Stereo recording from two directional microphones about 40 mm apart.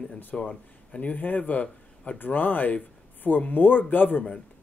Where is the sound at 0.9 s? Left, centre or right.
Left.